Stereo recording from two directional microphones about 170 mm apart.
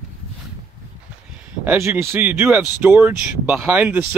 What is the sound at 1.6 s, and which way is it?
Speech, 15° right (ahead or behind).